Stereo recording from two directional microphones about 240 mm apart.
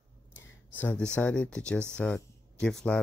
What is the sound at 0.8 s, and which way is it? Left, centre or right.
Speech, centre.